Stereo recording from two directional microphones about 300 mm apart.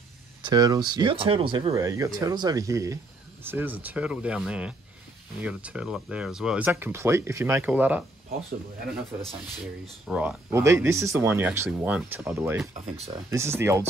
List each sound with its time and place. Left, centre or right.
0.4 s speech: centre
10.0 s speech: centre